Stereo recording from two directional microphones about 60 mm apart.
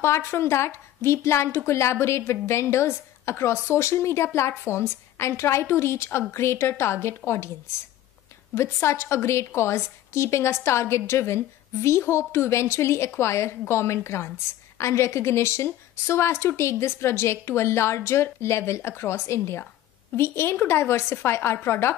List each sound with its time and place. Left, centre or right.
0.0 s a woman's voice: left
8.8 s a woman's voice: left